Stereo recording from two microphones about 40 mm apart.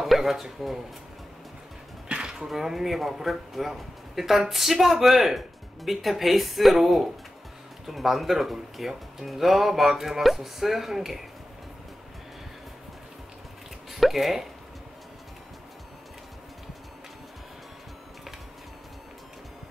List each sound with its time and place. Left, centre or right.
0.0 s speech: centre
2.0 s a sound: right
2.3 s speech: centre
13.9 s speech: centre